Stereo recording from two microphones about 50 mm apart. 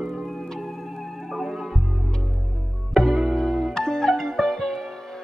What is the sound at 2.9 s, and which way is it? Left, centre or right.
Music, centre.